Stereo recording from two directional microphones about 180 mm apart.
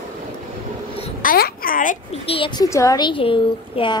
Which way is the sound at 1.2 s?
55° left (ahead or behind).